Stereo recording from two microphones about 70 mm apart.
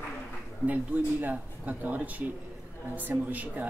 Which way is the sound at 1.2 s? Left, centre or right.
Right.